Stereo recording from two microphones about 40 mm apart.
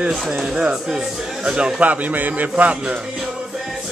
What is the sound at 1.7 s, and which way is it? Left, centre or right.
Speech, right.